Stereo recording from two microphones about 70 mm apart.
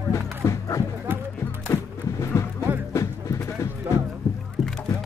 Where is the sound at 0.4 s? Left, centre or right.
Left.